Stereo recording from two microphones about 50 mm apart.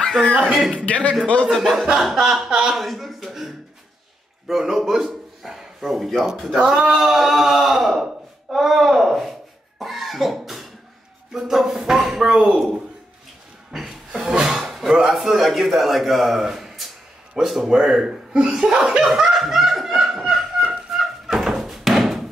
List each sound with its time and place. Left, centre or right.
0.4 s speech: centre
0.8 s a man's voice: left
1.4 s a man's voice: centre
9.8 s cough: centre
11.3 s speech: centre
13.7 s a sound: centre
14.3 s roar: centre
15.0 s speech: centre
18.5 s laughter: centre
20.9 s thunk: centre